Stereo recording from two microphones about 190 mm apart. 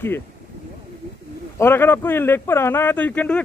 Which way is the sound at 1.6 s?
10° left (ahead or behind).